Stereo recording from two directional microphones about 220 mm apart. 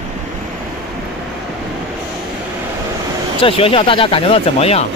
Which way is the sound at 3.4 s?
25° left (ahead or behind).